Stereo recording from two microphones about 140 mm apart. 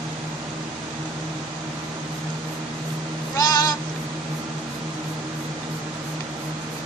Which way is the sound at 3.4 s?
25° left (ahead or behind).